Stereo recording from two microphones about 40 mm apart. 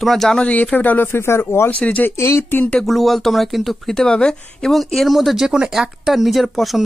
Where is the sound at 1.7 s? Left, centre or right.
Left.